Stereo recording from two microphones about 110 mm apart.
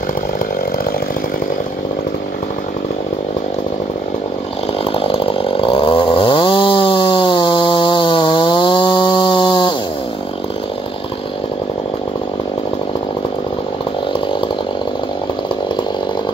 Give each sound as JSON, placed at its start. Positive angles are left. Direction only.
{"t": 4.9, "sound": "chainsaw", "side_deg": 55}